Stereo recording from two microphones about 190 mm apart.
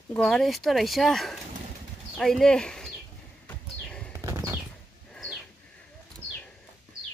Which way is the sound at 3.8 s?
5° left (ahead or behind).